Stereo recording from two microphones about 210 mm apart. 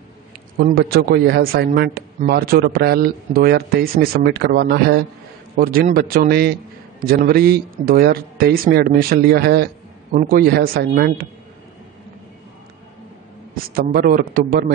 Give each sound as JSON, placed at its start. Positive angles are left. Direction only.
{"t": 0.6, "sound": "speech", "side_deg": -45}
{"t": 13.7, "sound": "speech", "side_deg": -45}